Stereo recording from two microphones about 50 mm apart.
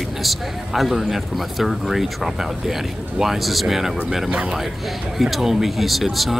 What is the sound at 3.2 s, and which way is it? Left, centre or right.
Speech, centre.